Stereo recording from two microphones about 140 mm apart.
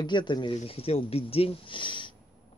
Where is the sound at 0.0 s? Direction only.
35° left (ahead or behind).